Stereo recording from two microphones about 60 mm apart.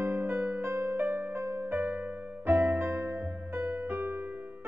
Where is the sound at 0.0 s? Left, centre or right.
Right.